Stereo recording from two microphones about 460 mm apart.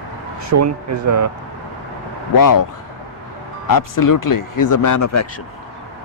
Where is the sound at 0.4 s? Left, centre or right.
Right.